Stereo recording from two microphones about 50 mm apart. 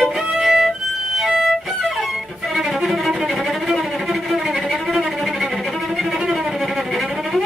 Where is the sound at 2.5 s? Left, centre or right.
Centre.